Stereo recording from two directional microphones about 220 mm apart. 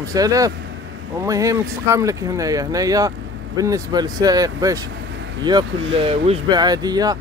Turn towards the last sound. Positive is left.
turn(degrees=-15)  # may be behind; listen again after turning